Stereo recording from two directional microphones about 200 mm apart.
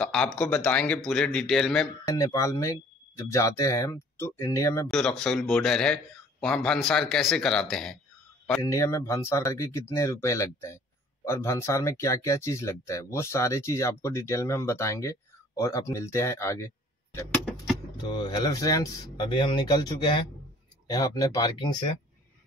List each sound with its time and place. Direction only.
0.0 s speech: 5° left (ahead or behind)
2.0 s speech: 15° left (ahead or behind)
4.8 s speech: centre (ahead or behind)
8.6 s speech: 15° left (ahead or behind)